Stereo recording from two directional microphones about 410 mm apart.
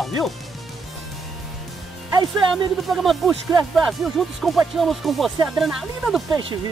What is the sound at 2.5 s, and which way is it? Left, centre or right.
Speech, centre.